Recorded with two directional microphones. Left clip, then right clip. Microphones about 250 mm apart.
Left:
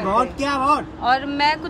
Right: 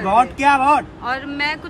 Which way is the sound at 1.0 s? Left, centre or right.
Left.